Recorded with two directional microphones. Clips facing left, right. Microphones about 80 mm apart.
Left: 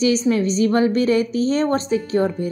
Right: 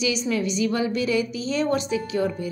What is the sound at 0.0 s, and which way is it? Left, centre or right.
A woman's voice, left.